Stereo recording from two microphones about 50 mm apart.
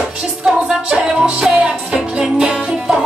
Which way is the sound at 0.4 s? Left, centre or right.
Centre.